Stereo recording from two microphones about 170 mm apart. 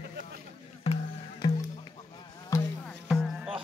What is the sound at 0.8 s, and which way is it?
Music, 35° left (ahead or behind).